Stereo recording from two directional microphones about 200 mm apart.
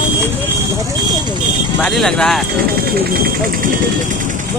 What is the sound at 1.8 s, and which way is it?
Speech, centre (ahead or behind).